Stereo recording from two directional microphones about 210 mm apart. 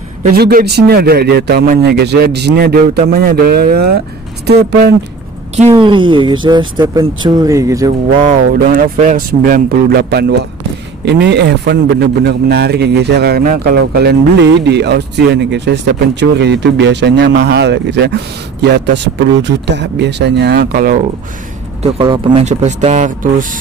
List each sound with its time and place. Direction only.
0.3 s a man's voice: 45° right (ahead or behind)
5.6 s speech: 25° right (ahead or behind)
8.3 s a man's voice: 40° right (ahead or behind)
22.0 s speech: 25° right (ahead or behind)